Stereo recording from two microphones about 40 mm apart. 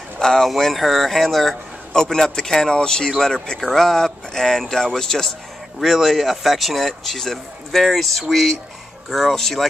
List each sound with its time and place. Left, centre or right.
0.4 s speech: centre
5.9 s speech: centre